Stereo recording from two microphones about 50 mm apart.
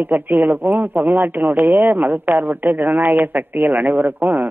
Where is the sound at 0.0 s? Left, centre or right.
Right.